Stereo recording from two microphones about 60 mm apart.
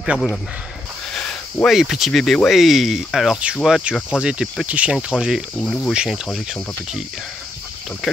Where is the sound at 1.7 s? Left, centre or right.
Centre.